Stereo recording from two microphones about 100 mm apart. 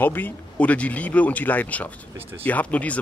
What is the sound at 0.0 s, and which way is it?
Speech, 20° left (ahead or behind).